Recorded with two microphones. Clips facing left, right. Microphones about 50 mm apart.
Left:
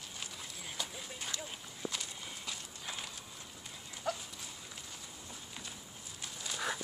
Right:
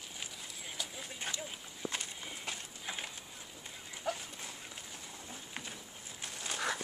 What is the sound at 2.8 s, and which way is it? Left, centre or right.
Horse, centre.